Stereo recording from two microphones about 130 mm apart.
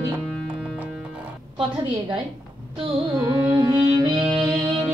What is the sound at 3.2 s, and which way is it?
Music, 30° right (ahead or behind).